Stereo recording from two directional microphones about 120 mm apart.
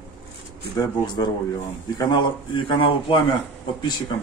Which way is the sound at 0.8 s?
35° left (ahead or behind).